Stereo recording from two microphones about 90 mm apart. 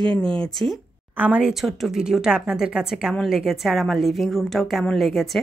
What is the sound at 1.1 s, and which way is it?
Speech, 15° right (ahead or behind).